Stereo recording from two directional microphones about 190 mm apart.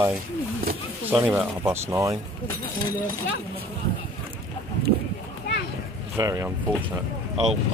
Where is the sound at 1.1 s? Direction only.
5° right (ahead or behind).